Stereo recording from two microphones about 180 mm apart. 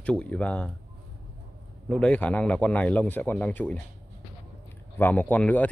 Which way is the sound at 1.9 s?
5° left (ahead or behind).